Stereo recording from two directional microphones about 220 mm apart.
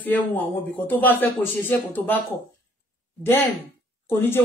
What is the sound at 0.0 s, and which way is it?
Speech, 10° left (ahead or behind).